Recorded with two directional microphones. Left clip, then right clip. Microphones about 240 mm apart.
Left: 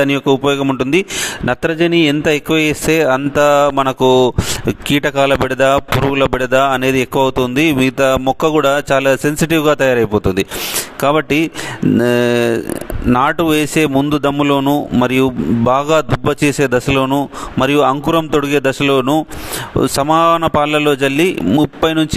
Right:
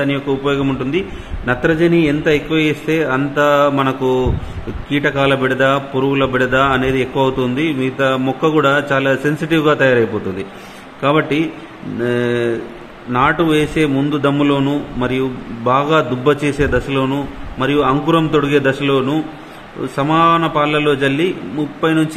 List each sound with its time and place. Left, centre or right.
0.0 s a man's voice: left